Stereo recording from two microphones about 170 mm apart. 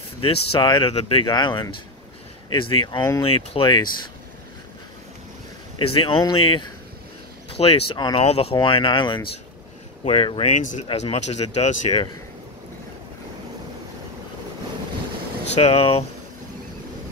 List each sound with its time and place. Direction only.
0.2 s speech: 30° left (ahead or behind)
5.8 s speech: 30° left (ahead or behind)
10.5 s speech: 45° left (ahead or behind)
15.5 s speech: 35° left (ahead or behind)